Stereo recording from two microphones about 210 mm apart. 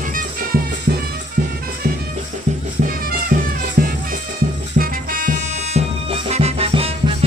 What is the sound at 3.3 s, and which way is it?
Music, 45° right (ahead or behind).